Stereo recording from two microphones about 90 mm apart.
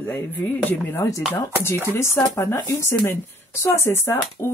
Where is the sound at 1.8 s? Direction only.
30° left (ahead or behind).